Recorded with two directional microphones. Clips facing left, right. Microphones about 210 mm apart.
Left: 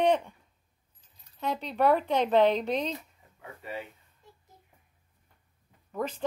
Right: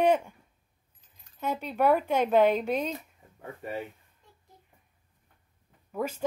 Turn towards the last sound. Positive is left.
turn(degrees=-5)  # may be behind; listen again after turning